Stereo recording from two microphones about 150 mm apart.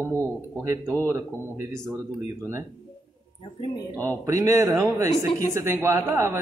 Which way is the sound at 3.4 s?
35° left (ahead or behind).